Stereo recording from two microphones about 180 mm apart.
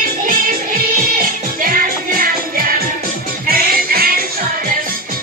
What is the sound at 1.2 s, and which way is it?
Music, 50° right (ahead or behind).